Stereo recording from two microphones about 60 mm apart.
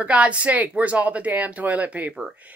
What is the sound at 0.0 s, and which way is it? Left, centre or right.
Speech, right.